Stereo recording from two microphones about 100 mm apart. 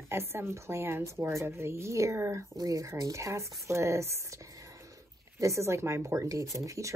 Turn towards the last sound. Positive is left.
turn(degrees=-30)  # may be behind; listen again after turning